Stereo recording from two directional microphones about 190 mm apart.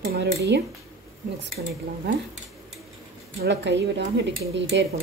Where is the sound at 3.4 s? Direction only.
65° right (ahead or behind).